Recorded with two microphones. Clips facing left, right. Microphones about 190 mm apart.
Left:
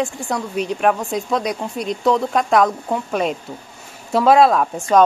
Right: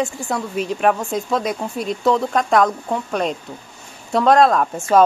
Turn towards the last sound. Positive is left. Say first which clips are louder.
# even
turn(degrees=0)  # may be behind; listen again after turning